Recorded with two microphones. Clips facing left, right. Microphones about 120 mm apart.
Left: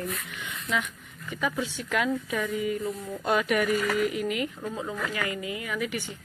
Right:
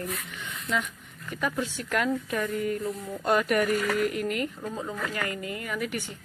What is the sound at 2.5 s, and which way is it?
Speech, 45° right (ahead or behind).